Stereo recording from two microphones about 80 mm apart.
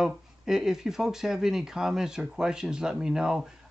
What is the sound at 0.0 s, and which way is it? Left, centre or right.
Speech, centre.